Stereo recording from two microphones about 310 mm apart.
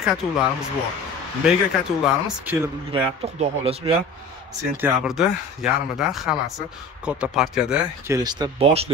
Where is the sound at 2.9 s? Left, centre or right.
Centre.